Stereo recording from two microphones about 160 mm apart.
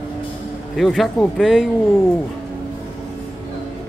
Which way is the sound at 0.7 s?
Centre (ahead or behind).